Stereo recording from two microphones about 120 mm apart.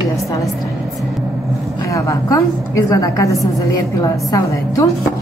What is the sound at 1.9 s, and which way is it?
A woman's voice, 25° left (ahead or behind).